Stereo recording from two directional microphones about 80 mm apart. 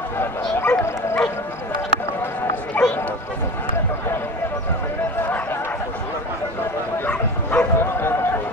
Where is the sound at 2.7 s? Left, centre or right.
Centre.